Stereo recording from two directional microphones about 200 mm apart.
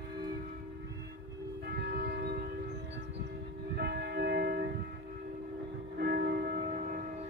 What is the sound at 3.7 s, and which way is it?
Church bell, 50° right (ahead or behind).